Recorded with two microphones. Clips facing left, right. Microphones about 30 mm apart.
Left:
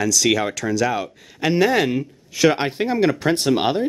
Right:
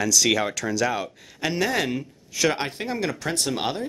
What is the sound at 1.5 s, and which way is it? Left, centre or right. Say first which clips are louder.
Speech: left 7 dB; centre.